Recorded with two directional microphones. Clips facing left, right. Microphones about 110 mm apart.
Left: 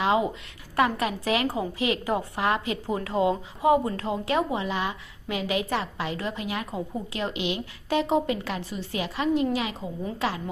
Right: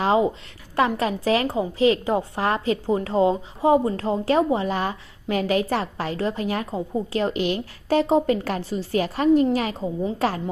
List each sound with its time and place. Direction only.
0.0 s a woman's voice: 35° right (ahead or behind)